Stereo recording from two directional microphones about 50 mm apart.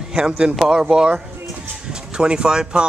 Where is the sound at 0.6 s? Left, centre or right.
Centre.